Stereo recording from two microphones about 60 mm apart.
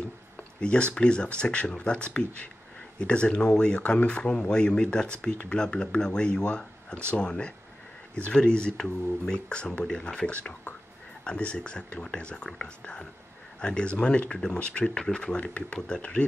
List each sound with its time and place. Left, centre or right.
0.6 s speech: centre